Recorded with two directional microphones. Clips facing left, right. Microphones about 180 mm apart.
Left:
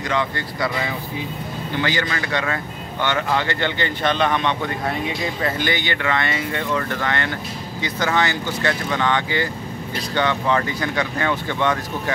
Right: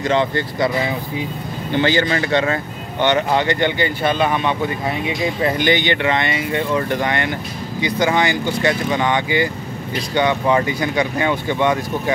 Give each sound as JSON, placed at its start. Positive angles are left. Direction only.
{"t": 0.0, "sound": "speech", "side_deg": -30}
{"t": 1.8, "sound": "speech", "side_deg": -30}
{"t": 5.2, "sound": "speech", "side_deg": -20}